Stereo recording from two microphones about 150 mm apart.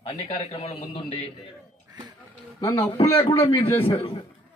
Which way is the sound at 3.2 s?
40° left (ahead or behind).